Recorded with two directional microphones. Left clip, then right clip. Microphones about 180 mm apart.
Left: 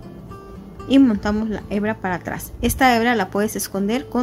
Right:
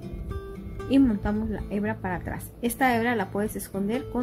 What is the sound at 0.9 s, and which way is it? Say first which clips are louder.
A woman's voice: left 7 dB; 15° left (ahead or behind).